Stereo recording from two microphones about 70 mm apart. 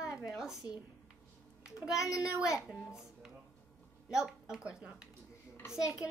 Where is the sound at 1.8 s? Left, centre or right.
Centre.